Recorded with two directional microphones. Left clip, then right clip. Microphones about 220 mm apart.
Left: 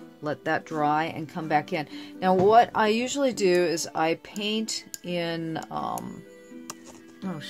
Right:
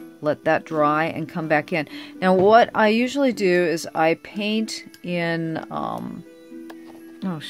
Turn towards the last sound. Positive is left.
turn(degrees=-40)  # may be behind; listen again after turning